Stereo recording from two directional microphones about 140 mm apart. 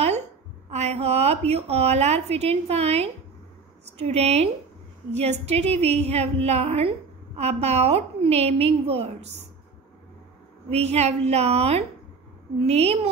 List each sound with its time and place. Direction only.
0.7 s a woman's voice: 50° right (ahead or behind)
10.7 s a woman's voice: 50° right (ahead or behind)